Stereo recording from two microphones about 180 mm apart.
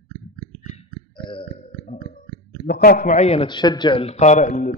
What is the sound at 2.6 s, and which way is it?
A man's voice, 55° left (ahead or behind).